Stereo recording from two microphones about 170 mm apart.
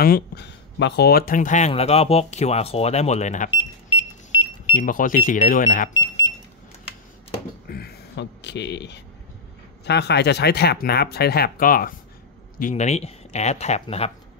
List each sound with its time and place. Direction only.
0.0 s speech: 70° left (ahead or behind); by 1.7 s 50° left (ahead or behind)
1.7 s speech: 35° left (ahead or behind)
3.4 s a sound: 30° left (ahead or behind)
4.8 s speech: 50° left (ahead or behind)
5.9 s a sound: 25° left (ahead or behind)
7.6 s speech: 65° left (ahead or behind); by 9.0 s 90° left
9.8 s speech: 75° left (ahead or behind); by 11.9 s 55° left (ahead or behind)
12.5 s speech: 45° left (ahead or behind)